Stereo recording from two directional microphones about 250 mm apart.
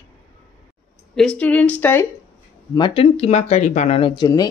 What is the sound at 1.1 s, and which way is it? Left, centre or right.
Speech, centre.